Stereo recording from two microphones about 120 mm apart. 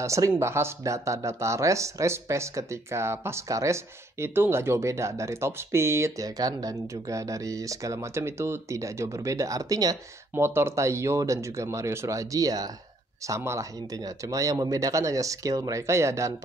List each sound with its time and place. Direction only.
0.0 s speech: 25° right (ahead or behind)